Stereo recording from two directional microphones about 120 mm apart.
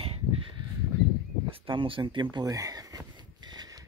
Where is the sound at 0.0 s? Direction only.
55° right (ahead or behind).